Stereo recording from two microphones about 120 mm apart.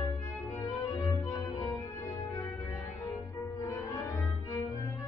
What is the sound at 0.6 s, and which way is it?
Music, 30° left (ahead or behind).